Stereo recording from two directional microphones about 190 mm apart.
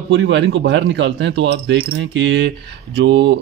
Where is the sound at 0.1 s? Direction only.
70° right (ahead or behind).